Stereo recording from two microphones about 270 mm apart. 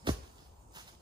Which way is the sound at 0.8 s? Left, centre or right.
Centre.